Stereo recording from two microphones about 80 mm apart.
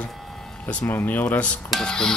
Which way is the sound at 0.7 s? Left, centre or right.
Centre.